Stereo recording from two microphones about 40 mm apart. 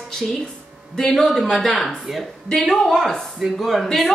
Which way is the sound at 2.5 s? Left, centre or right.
Centre.